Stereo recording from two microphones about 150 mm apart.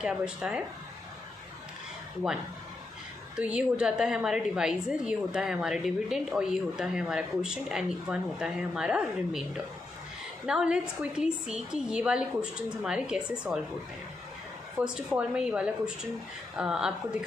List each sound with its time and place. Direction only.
0.0 s a woman's voice: 5° right (ahead or behind)
2.2 s a woman's voice: 5° right (ahead or behind)
14.8 s a woman's voice: 5° right (ahead or behind)